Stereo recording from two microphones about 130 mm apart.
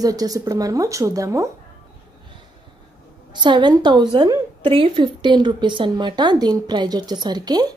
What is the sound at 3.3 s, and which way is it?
A woman's voice, 35° right (ahead or behind).